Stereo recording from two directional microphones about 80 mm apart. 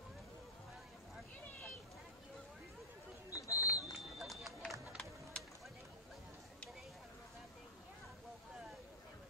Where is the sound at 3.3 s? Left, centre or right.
Left.